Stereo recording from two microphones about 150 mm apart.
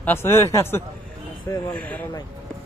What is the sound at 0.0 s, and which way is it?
Speech, 15° left (ahead or behind).